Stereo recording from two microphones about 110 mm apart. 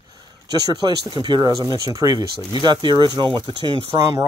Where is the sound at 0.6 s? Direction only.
40° right (ahead or behind).